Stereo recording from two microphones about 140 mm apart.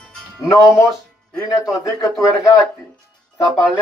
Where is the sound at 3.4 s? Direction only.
30° left (ahead or behind).